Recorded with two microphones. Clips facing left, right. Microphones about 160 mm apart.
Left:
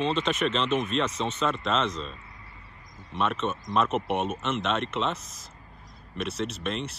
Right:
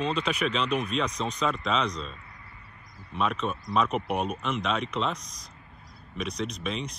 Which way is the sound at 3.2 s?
Centre (ahead or behind).